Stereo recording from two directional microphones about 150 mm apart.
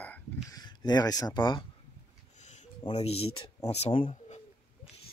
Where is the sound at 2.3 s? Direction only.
50° left (ahead or behind).